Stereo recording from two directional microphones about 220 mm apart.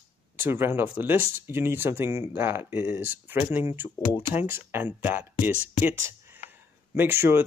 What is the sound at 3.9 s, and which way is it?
Speech, 15° left (ahead or behind).